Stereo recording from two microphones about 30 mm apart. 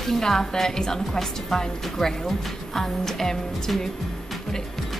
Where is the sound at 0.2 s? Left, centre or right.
Centre.